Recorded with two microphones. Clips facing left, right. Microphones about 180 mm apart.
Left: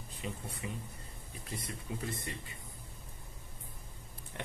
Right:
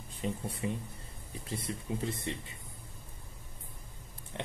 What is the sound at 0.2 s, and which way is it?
Speech, 30° right (ahead or behind).